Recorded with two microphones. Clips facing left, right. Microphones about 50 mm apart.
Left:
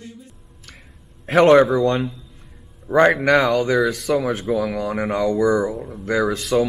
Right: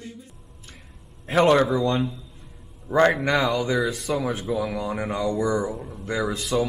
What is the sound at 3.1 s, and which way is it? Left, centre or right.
Speech, left.